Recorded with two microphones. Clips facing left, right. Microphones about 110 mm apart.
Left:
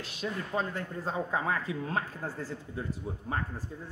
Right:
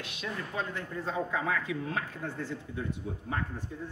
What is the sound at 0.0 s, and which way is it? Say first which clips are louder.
Speech: left 2 dB; 40° left (ahead or behind).